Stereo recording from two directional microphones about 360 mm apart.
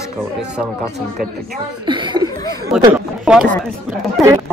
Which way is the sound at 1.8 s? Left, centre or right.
Centre.